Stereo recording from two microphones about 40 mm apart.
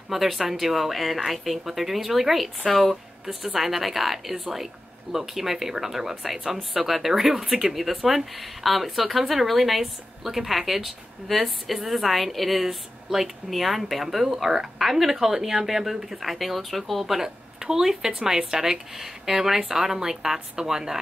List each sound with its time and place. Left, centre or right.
0.1 s speech: centre